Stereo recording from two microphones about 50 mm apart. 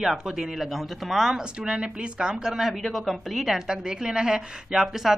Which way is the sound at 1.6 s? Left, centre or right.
Right.